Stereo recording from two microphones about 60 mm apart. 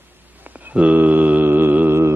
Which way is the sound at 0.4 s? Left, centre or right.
Right.